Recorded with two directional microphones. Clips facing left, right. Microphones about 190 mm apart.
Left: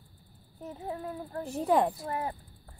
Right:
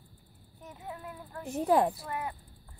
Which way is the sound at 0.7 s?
35° left (ahead or behind).